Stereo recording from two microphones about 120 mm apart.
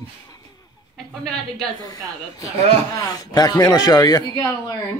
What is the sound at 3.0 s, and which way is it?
Speech, 30° left (ahead or behind).